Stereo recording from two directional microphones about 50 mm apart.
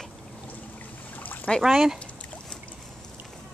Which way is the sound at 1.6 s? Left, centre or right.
Centre.